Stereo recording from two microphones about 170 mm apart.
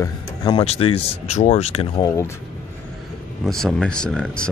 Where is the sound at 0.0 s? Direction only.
25° left (ahead or behind).